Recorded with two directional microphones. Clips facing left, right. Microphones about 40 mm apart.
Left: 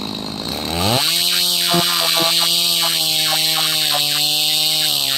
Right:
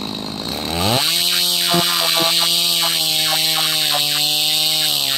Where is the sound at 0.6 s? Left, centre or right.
Right.